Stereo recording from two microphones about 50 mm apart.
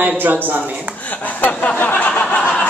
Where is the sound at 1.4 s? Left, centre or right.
Left.